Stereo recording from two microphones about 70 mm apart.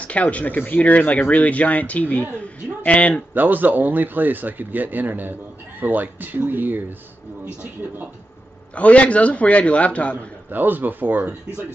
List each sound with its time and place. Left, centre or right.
0.0 s a man's voice: centre
3.3 s a man's voice: right
8.7 s a man's voice: centre
10.5 s a man's voice: right